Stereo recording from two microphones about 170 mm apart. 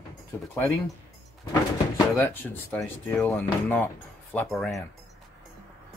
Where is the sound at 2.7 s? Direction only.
10° left (ahead or behind).